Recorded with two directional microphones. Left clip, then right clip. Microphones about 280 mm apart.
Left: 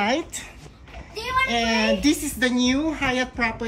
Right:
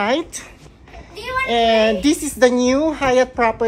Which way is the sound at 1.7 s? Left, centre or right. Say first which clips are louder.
Right 6 dB; centre.